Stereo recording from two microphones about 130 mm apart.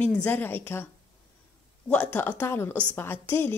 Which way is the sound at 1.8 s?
15° left (ahead or behind).